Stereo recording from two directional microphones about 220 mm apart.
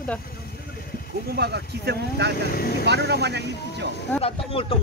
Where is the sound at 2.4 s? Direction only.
45° left (ahead or behind).